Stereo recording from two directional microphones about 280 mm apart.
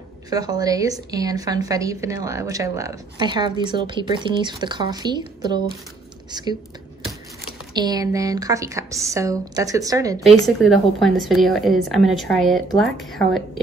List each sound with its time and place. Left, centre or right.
0.3 s a woman's voice: centre
7.7 s a woman's voice: centre
10.2 s a woman's voice: centre